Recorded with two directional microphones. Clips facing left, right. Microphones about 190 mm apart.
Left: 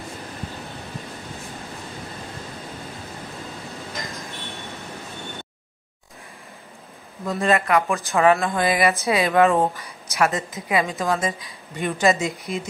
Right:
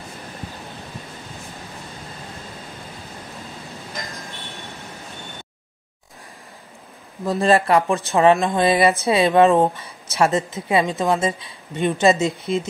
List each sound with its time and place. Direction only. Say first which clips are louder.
7.2 s speech: right 4 dB; 35° right (ahead or behind)